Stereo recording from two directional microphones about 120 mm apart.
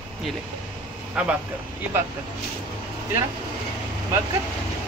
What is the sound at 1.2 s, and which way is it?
Speech, 10° right (ahead or behind).